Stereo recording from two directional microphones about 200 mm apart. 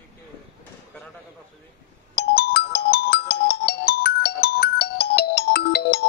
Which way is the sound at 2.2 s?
50° left (ahead or behind).